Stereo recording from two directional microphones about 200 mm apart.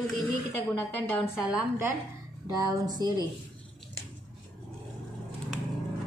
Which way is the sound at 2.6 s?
20° right (ahead or behind).